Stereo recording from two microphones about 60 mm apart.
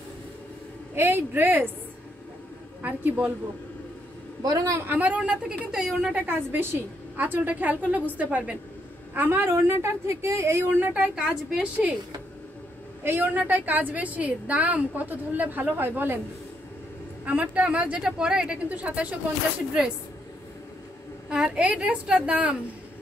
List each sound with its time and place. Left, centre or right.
0.9 s a woman's voice: right
2.8 s a woman's voice: right
4.4 s a man's voice: right
4.8 s a woman's voice: right
5.7 s a woman's voice: centre
6.2 s a woman's voice: right
9.5 s speech: right
10.9 s a woman's voice: centre
13.0 s a woman's voice: right
17.2 s a woman's voice: right
18.8 s a woman's voice: right
21.3 s a woman's voice: centre